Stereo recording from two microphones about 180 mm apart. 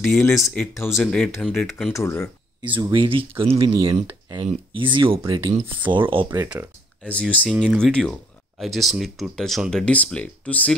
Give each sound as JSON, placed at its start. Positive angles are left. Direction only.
{"t": 0.0, "sound": "speech", "side_deg": 5}
{"t": 2.0, "sound": "speech", "side_deg": 15}
{"t": 2.7, "sound": "speech", "side_deg": -30}
{"t": 7.0, "sound": "speech", "side_deg": 5}